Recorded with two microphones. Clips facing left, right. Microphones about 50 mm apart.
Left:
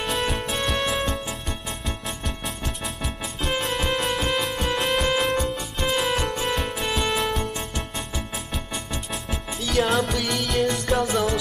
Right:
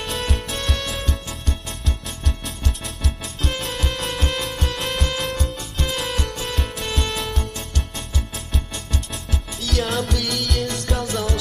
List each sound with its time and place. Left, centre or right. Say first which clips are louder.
0.0 s music: left 2 dB; centre
5.3 s music: left 3 dB; left
5.9 s music: left 4 dB; centre
9.6 s music: left 2 dB; centre
10.1 s music: left 1 dB; centre